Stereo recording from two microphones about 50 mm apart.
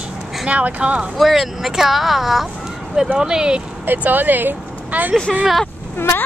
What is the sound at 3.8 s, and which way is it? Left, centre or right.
Speech, right.